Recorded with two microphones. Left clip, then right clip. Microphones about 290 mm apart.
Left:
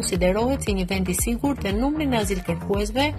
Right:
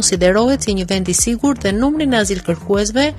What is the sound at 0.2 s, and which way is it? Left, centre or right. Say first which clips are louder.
Speech: right 8 dB; right.